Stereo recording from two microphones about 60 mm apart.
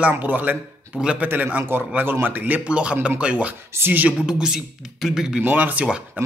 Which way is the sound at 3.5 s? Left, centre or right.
Right.